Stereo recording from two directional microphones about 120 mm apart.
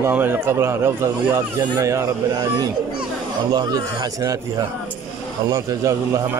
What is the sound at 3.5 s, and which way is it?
Speech, 35° right (ahead or behind).